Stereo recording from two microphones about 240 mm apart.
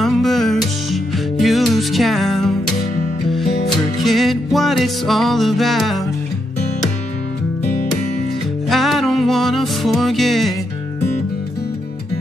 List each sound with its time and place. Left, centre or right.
0.0 s music: centre
8.6 s music: centre